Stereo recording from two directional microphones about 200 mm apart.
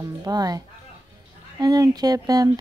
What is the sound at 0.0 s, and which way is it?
Speech, 20° right (ahead or behind).